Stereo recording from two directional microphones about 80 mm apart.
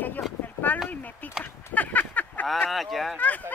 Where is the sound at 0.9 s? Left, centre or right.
Centre.